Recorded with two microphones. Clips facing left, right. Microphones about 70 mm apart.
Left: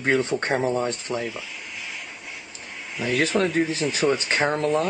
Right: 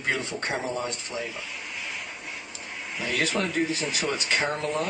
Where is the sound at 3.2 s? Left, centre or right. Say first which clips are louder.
Left 4 dB; left.